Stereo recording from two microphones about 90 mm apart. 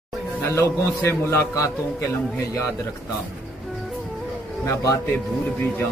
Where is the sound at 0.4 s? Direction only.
30° left (ahead or behind).